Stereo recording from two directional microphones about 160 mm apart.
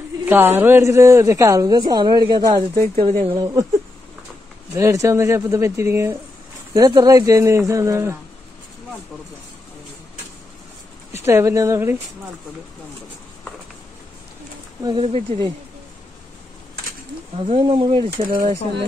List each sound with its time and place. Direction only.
0.3 s a woman's voice: 15° right (ahead or behind)
4.7 s a woman's voice: 20° right (ahead or behind)
11.1 s speech: 15° right (ahead or behind)
14.8 s a woman's voice: 30° right (ahead or behind)
17.5 s speech: 30° right (ahead or behind)
18.3 s speech: 50° right (ahead or behind)